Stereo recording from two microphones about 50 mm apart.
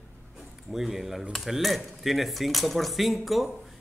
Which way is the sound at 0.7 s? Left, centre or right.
Centre.